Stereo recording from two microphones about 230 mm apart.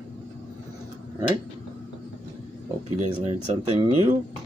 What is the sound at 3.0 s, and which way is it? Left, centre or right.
Speech, right.